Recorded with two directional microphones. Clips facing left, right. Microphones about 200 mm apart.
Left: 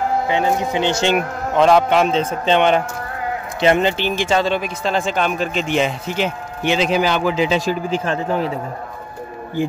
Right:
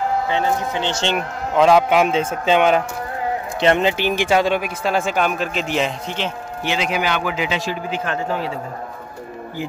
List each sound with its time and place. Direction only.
0.3 s speech: 15° left (ahead or behind)
1.5 s speech: 5° right (ahead or behind)
3.9 s speech: 15° right (ahead or behind); by 6.7 s 10° left (ahead or behind)
6.7 s a man's voice: 30° left (ahead or behind)